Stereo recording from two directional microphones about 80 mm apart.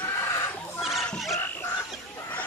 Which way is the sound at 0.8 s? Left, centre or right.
Centre.